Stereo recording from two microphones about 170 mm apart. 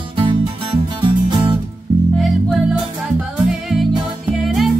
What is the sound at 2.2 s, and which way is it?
Music, centre (ahead or behind).